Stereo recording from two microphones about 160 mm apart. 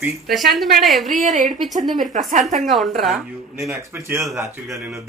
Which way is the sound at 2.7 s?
Centre (ahead or behind).